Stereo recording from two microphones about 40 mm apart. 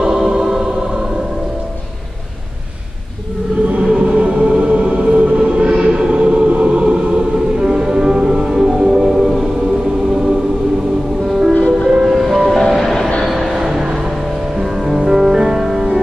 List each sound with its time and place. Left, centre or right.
0.0 s music: centre
3.8 s music: centre
5.4 s a sound: right
5.9 s music: right
11.2 s music: centre
11.9 s train: centre
13.2 s a sound: centre
13.6 s a sound: centre
14.6 s music: centre